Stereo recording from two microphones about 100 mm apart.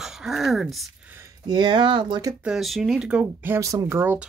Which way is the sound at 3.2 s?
20° right (ahead or behind).